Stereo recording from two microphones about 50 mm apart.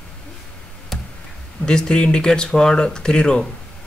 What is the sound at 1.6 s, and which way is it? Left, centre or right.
Speech, centre.